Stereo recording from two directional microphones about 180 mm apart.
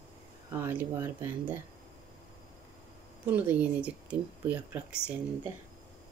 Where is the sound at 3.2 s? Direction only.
10° right (ahead or behind).